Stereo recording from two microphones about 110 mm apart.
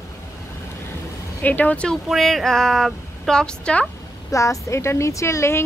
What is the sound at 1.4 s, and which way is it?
A woman's voice, 15° left (ahead or behind).